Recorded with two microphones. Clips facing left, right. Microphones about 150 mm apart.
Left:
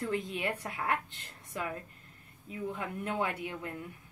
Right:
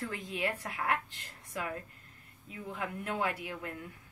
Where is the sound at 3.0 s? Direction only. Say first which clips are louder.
Left 1 dB; 25° left (ahead or behind).